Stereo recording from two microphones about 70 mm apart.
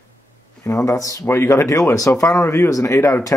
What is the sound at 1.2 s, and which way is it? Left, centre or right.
Speech, left.